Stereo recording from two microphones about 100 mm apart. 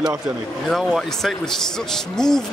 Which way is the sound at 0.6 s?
Centre (ahead or behind).